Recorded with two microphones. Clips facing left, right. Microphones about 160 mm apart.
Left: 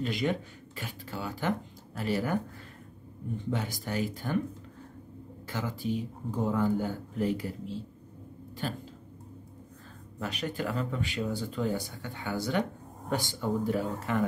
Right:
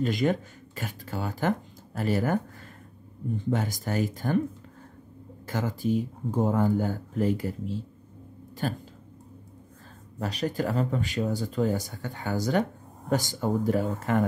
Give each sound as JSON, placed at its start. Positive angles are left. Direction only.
{"t": 0.0, "sound": "speech", "side_deg": -45}
{"t": 3.4, "sound": "speech", "side_deg": -45}
{"t": 5.5, "sound": "speech", "side_deg": -45}
{"t": 10.1, "sound": "speech", "side_deg": -40}